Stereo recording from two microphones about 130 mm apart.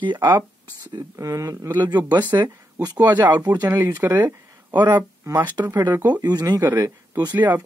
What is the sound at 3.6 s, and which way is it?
Speech, 20° right (ahead or behind).